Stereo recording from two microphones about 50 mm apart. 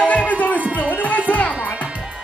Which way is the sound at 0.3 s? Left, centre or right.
Left.